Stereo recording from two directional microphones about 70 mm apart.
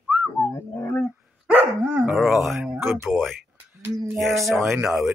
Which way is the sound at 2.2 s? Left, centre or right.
Centre.